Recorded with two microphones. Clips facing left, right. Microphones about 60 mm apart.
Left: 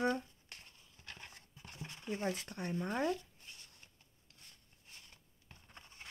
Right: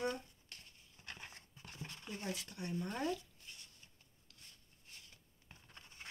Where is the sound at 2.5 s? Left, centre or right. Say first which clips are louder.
Left 3 dB; left.